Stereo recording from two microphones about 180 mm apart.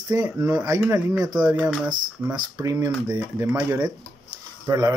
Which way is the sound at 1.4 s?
5° right (ahead or behind).